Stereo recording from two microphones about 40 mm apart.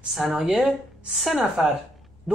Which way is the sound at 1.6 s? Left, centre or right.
Centre.